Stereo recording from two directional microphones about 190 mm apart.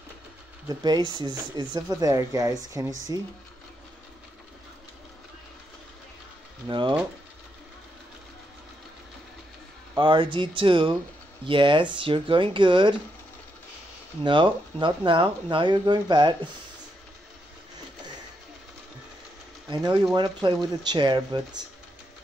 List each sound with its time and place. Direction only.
0.7 s speech: 20° right (ahead or behind)
6.7 s speech: 25° right (ahead or behind)
9.9 s speech: 25° right (ahead or behind)
14.2 s speech: 25° right (ahead or behind)
19.7 s speech: 25° right (ahead or behind)